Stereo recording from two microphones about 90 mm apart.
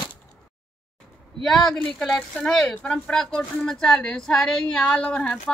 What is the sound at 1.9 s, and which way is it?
Speech, 5° left (ahead or behind).